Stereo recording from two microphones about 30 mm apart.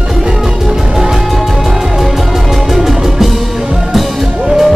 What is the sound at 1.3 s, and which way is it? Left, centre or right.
Music, centre.